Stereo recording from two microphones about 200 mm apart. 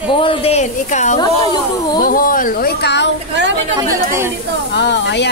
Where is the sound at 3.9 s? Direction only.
15° right (ahead or behind).